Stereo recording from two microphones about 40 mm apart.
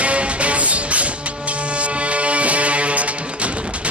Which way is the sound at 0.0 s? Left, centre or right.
Right.